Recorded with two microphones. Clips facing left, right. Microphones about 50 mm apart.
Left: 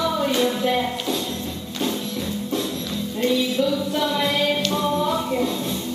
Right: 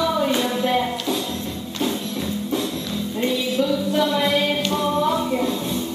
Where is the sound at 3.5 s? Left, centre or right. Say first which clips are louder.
Right 2 dB; centre.